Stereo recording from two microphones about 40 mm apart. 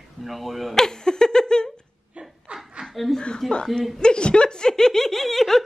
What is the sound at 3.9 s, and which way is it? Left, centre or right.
Speech, left.